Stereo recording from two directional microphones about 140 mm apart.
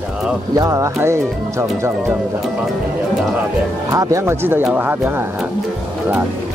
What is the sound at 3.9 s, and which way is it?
Speech, 25° right (ahead or behind).